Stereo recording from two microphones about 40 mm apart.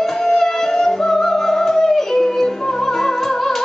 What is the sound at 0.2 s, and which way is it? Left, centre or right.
Music, centre.